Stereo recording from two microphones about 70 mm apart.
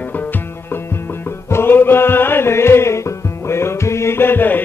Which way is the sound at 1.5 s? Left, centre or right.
Left.